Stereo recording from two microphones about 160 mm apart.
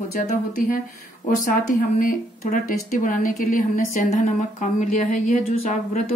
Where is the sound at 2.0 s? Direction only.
55° left (ahead or behind).